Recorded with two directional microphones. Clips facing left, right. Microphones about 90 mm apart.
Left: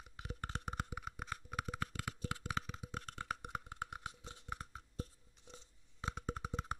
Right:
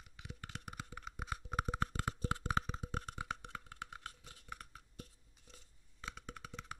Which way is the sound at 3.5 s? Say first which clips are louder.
Left 4 dB; 20° left (ahead or behind).